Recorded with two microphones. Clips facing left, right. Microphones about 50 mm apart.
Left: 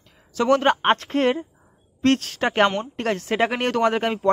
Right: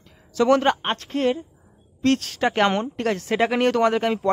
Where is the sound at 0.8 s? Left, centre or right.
Left.